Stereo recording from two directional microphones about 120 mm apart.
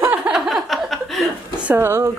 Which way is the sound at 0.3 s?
Centre (ahead or behind).